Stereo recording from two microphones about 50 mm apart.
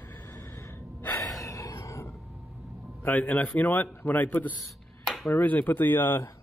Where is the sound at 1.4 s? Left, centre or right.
Left.